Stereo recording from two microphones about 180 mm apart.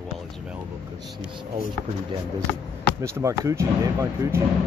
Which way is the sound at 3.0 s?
15° right (ahead or behind).